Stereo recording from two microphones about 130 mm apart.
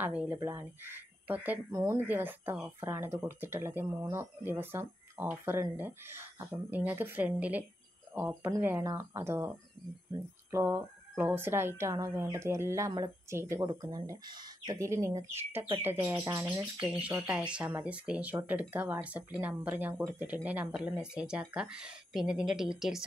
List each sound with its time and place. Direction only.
0.0 s speech: 10° right (ahead or behind)
1.7 s speech: 25° right (ahead or behind)
10.5 s speech: 15° right (ahead or behind)
16.8 s speech: 10° right (ahead or behind)